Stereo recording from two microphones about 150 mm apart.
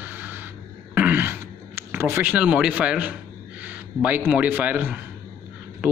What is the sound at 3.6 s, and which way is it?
A man's voice, 10° right (ahead or behind).